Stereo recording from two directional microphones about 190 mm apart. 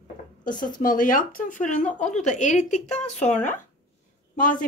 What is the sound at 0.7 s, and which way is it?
A woman's voice, 45° left (ahead or behind).